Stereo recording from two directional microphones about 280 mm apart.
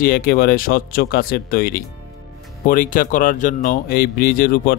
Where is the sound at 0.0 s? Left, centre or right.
Left.